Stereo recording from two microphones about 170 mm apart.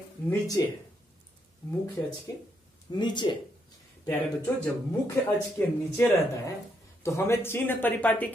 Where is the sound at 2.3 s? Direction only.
20° left (ahead or behind).